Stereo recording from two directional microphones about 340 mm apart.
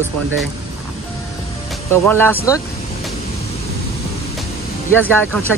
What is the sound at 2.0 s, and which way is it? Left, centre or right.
Speech, centre.